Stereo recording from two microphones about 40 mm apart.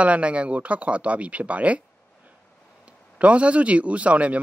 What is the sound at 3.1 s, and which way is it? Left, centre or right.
Speech, right.